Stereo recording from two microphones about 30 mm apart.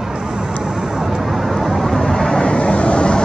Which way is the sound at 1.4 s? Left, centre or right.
Centre.